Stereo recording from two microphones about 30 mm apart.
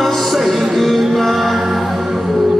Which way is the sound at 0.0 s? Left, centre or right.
Centre.